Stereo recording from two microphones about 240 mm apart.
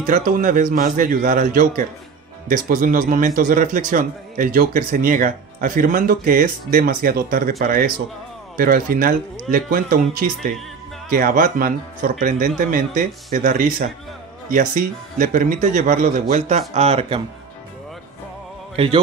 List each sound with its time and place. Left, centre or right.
0.0 s speech: right